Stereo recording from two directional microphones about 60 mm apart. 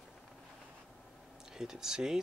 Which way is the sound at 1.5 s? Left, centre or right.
Centre.